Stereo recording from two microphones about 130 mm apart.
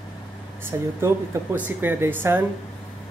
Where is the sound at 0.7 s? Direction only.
20° right (ahead or behind).